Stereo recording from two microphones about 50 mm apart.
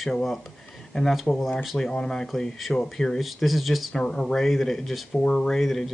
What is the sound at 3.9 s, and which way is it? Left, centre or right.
Speech, centre.